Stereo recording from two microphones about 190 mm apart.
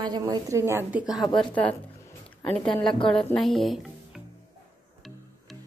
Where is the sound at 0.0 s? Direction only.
20° right (ahead or behind); by 4.2 s centre (ahead or behind).